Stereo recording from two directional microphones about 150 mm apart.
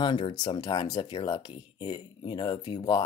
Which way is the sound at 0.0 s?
35° left (ahead or behind).